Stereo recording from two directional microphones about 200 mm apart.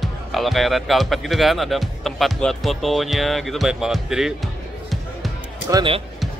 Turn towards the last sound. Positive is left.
turn(degrees=-25)  # may be behind; listen again after turning